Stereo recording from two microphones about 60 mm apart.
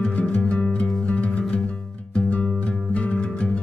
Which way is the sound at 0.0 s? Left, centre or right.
Centre.